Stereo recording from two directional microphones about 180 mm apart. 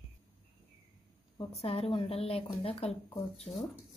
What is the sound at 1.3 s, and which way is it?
A woman's voice, 35° left (ahead or behind).